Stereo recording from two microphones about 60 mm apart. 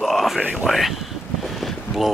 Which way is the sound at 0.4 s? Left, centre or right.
Right.